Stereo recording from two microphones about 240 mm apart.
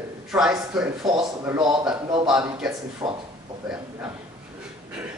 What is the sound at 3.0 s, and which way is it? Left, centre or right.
Speech, centre.